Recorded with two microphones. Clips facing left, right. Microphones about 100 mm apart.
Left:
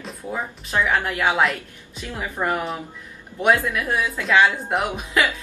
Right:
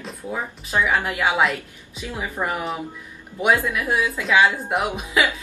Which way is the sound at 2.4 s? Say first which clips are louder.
Left 2 dB; 5° right (ahead or behind).